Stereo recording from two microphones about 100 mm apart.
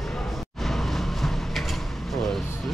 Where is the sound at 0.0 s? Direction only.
5° left (ahead or behind).